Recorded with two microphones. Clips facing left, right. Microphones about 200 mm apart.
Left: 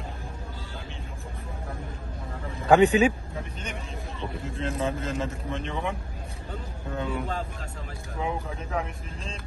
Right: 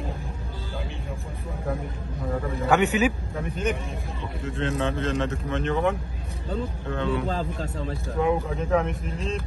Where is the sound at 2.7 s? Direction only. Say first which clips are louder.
Left 3 dB; 30° left (ahead or behind).